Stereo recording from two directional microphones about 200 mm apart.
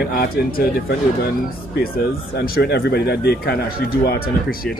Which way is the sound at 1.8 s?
50° left (ahead or behind).